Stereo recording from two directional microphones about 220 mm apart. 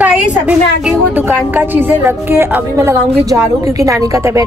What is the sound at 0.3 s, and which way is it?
A woman's voice, 5° right (ahead or behind).